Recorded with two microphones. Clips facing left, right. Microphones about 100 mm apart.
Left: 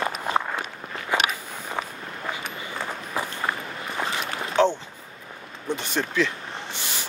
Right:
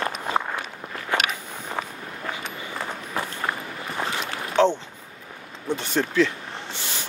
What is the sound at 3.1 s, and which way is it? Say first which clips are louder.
Walk: even; 15° left (ahead or behind).